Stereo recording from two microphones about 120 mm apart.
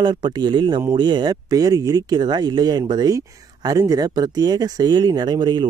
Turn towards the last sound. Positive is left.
turn(degrees=-40)  # may be behind; listen again after turning